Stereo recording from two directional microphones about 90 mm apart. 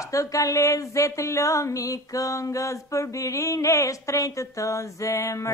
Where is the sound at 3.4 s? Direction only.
35° left (ahead or behind).